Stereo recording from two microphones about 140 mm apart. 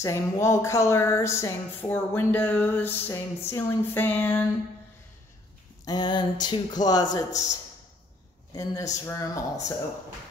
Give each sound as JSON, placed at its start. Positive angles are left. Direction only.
{"t": 0.0, "sound": "a woman's voice", "side_deg": 20}
{"t": 5.9, "sound": "speech", "side_deg": 30}
{"t": 8.5, "sound": "speech", "side_deg": 25}